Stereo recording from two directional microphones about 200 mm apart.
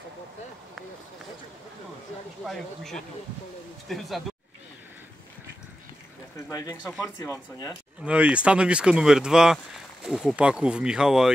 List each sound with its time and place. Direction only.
2.4 s speech: centre (ahead or behind)
6.5 s speech: 20° left (ahead or behind)
8.0 s speech: 5° right (ahead or behind)